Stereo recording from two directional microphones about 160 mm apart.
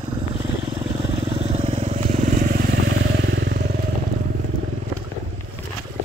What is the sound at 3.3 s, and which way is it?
Motorcycle, 90° right.